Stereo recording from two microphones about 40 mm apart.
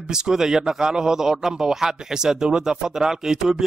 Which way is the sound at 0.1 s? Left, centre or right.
Centre.